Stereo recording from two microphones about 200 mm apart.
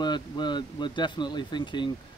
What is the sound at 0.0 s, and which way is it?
Speech, 20° left (ahead or behind).